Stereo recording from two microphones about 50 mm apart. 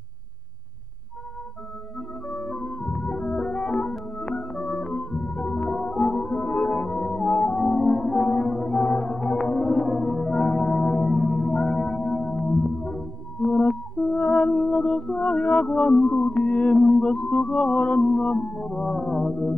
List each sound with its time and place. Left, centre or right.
2.0 s music: left
18.7 s music: centre